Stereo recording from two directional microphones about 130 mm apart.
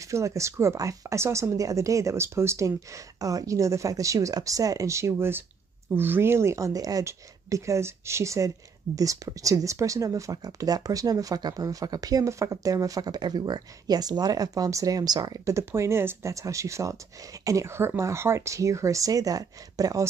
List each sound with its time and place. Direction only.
0.0 s speech: 25° right (ahead or behind)